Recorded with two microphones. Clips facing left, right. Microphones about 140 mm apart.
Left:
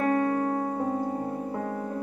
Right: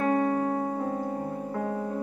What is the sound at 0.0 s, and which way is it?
Piano, 25° right (ahead or behind).